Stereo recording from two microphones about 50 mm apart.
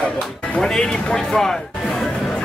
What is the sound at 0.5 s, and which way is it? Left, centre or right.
Speech, centre.